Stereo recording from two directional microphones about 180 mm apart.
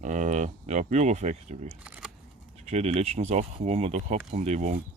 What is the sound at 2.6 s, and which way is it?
Speech, 35° right (ahead or behind).